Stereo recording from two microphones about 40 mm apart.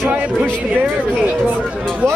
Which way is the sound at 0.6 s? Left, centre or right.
Right.